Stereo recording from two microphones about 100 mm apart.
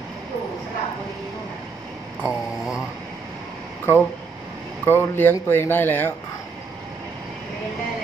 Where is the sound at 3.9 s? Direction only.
25° left (ahead or behind).